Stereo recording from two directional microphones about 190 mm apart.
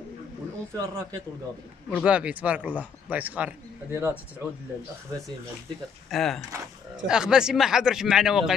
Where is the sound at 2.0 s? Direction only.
5° right (ahead or behind).